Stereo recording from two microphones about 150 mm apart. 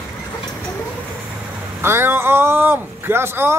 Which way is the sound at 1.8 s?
15° right (ahead or behind).